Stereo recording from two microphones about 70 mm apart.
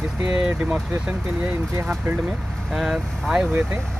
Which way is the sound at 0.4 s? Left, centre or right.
Centre.